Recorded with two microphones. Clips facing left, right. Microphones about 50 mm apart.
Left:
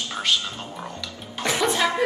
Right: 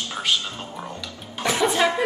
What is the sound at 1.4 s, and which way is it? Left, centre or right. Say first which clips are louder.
Speech: right 1 dB; centre.